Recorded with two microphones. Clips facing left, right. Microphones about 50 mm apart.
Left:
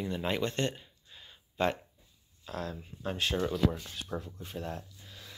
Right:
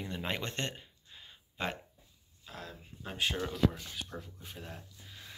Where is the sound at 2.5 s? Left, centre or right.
Centre.